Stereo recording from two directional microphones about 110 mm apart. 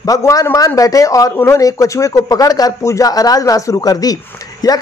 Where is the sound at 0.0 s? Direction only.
30° left (ahead or behind).